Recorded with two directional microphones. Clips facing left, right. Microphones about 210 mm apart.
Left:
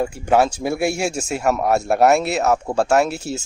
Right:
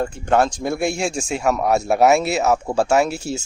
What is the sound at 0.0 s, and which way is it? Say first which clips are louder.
Speech: left 1 dB; 10° left (ahead or behind).